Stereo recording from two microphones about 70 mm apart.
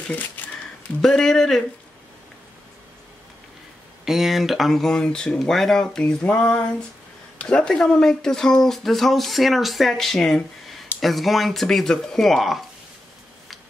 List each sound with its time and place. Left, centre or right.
0.4 s a sound: left
1.0 s speech: centre
4.0 s speech: centre